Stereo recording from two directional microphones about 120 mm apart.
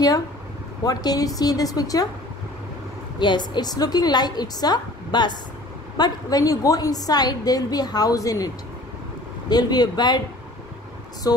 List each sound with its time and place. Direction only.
0.8 s a woman's voice: 30° left (ahead or behind)
3.2 s a woman's voice: 40° left (ahead or behind)
9.5 s a woman's voice: 35° left (ahead or behind)
11.3 s a woman's voice: 30° left (ahead or behind)